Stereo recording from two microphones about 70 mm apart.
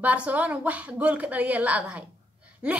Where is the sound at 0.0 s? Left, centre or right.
Right.